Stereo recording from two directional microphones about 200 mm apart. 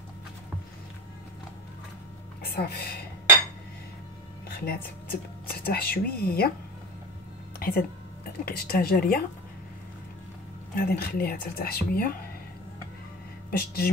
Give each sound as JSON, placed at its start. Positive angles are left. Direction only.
{"t": 2.5, "sound": "speech", "side_deg": 50}
{"t": 4.5, "sound": "a sound", "side_deg": 50}
{"t": 5.5, "sound": "speech", "side_deg": 50}
{"t": 7.5, "sound": "a sound", "side_deg": 45}
{"t": 8.5, "sound": "speech", "side_deg": 50}
{"t": 10.7, "sound": "speech", "side_deg": 50}
{"t": 13.5, "sound": "speech", "side_deg": 50}